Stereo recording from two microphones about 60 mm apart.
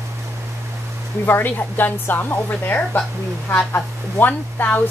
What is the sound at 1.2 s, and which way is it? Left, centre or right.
A woman's voice, left.